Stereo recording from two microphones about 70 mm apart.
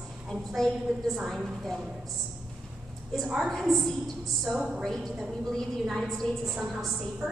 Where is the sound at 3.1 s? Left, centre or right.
Centre.